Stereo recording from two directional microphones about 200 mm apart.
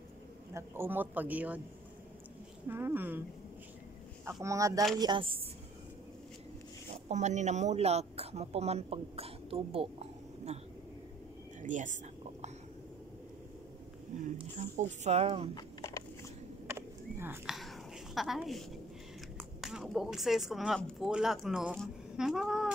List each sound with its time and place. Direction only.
0.6 s speech: 10° right (ahead or behind)
2.7 s speech: 10° right (ahead or behind)
4.2 s a woman's voice: 15° right (ahead or behind)
7.1 s speech: 35° right (ahead or behind)
11.6 s whispering: 40° right (ahead or behind)
14.4 s speech: 35° right (ahead or behind)
15.5 s a sound: 15° left (ahead or behind)
16.6 s horse: 10° right (ahead or behind)
17.6 s a sound: centre (ahead or behind)
19.3 s speech: centre (ahead or behind)